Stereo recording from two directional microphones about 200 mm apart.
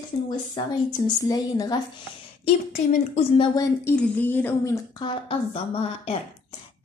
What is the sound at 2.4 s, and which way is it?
A woman's voice, 30° left (ahead or behind).